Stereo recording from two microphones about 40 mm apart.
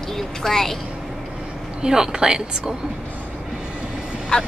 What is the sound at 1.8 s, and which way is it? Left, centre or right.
Speech, centre.